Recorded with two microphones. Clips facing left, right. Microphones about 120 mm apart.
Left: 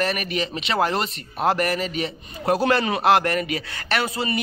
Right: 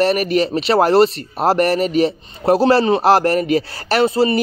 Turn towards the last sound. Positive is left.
turn(degrees=-30)  # may be behind; listen again after turning